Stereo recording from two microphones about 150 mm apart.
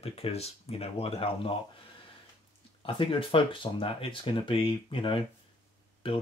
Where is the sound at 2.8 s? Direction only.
35° left (ahead or behind).